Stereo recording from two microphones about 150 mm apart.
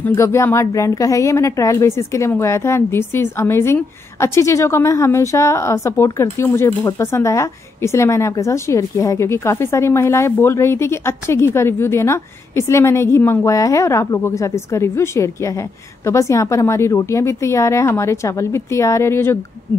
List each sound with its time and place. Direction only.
0.1 s a woman's voice: 20° left (ahead or behind)